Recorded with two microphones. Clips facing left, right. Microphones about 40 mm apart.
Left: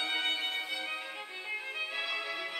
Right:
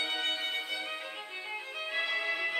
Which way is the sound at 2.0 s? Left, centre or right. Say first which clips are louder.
Right 8 dB; centre.